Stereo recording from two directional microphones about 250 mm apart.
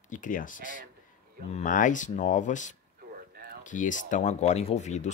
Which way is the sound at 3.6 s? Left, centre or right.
Left.